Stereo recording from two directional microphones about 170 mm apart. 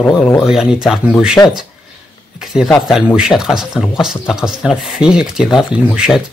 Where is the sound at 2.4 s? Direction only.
Centre (ahead or behind).